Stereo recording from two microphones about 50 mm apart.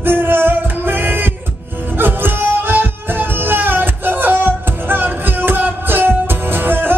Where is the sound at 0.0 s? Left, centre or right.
Right.